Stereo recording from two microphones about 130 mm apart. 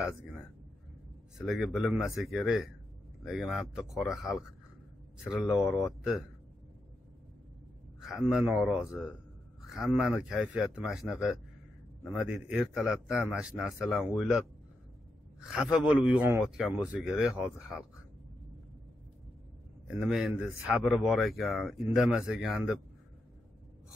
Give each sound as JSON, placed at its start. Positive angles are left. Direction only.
{"t": 1.4, "sound": "a man's voice", "side_deg": 0}
{"t": 8.0, "sound": "a man's voice", "side_deg": 0}
{"t": 9.7, "sound": "a man's voice", "side_deg": -5}
{"t": 15.5, "sound": "a man's voice", "side_deg": -5}
{"t": 19.9, "sound": "a man's voice", "side_deg": 0}